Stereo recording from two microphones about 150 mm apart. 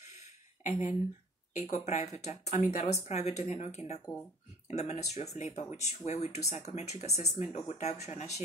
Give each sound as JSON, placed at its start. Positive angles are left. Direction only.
{"t": 0.0, "sound": "a sound", "side_deg": 50}
{"t": 1.6, "sound": "speech", "side_deg": 50}
{"t": 4.0, "sound": "speech", "side_deg": 5}
{"t": 4.6, "sound": "speech", "side_deg": 45}